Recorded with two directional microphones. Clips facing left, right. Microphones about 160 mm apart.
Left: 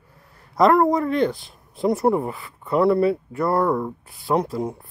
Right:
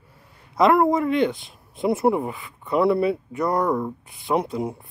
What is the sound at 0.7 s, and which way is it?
Speech, centre (ahead or behind).